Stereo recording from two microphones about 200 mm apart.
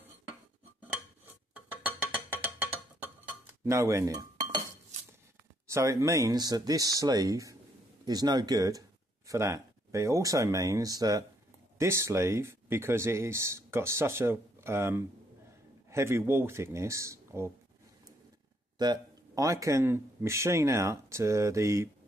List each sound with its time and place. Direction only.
1.7 s music: 10° right (ahead or behind)
5.7 s speech: 15° right (ahead or behind)
18.8 s speech: 20° right (ahead or behind)